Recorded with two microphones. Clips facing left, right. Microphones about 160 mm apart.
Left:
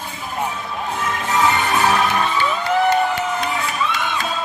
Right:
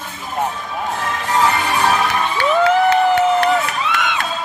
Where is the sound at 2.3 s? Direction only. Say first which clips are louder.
Right 5 dB; 70° right (ahead or behind).